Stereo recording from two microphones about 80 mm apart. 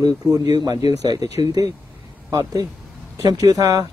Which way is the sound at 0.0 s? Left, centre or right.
Right.